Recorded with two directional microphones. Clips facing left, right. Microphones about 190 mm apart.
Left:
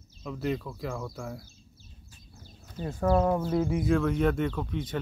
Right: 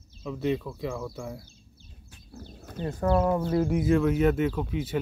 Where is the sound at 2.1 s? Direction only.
65° right (ahead or behind).